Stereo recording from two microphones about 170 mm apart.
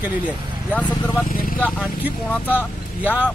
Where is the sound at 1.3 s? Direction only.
55° left (ahead or behind).